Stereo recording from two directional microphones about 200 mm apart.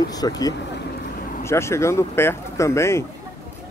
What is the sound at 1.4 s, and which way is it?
Speech, 15° left (ahead or behind).